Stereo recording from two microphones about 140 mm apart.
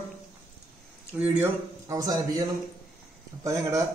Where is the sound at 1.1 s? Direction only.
15° right (ahead or behind).